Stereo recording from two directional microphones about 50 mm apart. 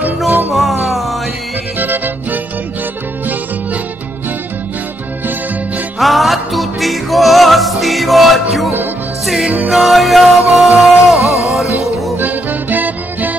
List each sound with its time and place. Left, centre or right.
0.5 s music: centre
1.8 s music: right
5.9 s music: centre
12.2 s music: right